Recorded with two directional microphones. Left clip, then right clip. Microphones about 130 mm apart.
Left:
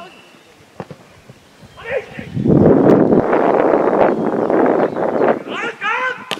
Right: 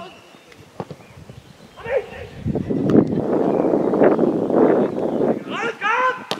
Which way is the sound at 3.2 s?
35° left (ahead or behind).